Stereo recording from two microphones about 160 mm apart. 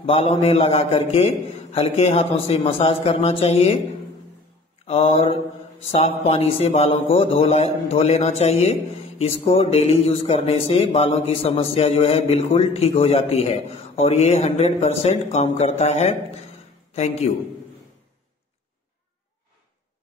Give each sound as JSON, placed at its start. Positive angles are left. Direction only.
{"t": 0.0, "sound": "speech", "side_deg": 35}
{"t": 4.8, "sound": "a man's voice", "side_deg": 35}